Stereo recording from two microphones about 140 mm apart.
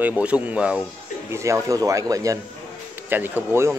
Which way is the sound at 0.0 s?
10° right (ahead or behind).